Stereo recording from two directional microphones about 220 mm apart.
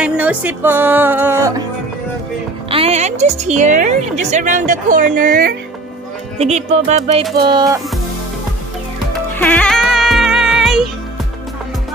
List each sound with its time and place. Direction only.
0.0 s music: 5° right (ahead or behind)
2.7 s a woman's voice: 30° right (ahead or behind)
6.3 s music: 30° right (ahead or behind)
9.3 s music: 5° left (ahead or behind)